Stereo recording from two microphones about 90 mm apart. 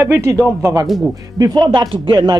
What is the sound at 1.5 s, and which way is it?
Speech, 50° right (ahead or behind).